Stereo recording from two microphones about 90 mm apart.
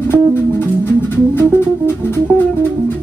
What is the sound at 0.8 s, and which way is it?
Music, 25° left (ahead or behind).